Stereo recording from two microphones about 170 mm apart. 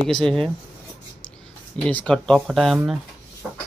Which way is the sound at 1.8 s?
5° left (ahead or behind).